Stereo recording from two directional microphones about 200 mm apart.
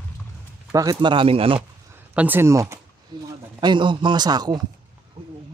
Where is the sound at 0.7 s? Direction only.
20° right (ahead or behind).